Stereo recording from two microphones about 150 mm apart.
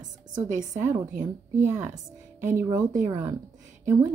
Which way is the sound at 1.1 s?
60° right (ahead or behind).